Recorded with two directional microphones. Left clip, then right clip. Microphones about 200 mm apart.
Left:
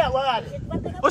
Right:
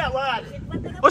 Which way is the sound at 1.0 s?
15° left (ahead or behind).